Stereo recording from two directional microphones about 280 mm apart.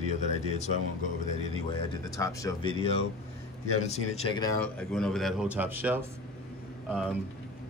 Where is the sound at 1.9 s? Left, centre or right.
Centre.